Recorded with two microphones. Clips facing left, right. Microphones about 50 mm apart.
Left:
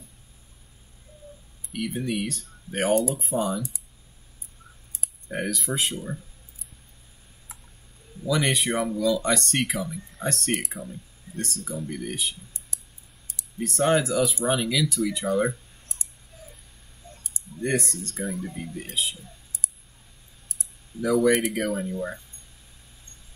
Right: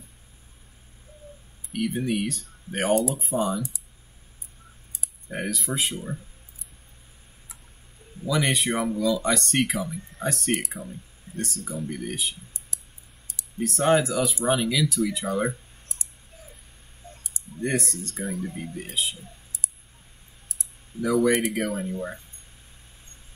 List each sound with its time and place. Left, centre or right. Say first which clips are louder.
1.7 s speech: right 2 dB; centre
5.3 s speech: left 1 dB; centre
8.3 s speech: even; centre
13.6 s speech: right 1 dB; centre
17.0 s clicking: right 1 dB; right
17.6 s speech: left 1 dB; centre
21.0 s speech: left 1 dB; centre